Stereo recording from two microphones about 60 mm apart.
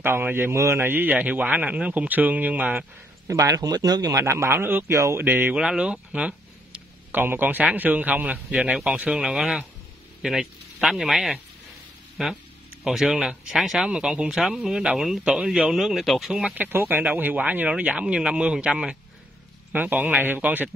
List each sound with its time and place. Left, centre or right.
0.0 s speech: right
3.3 s speech: right
4.2 s speech: right
4.8 s a sound: right
5.2 s speech: right
5.5 s a sound: centre
7.2 s speech: right
8.5 s speech: centre
9.2 s speech: centre
12.8 s speech: centre
16.5 s speech: right; by 18.9 s centre
19.7 s speech: right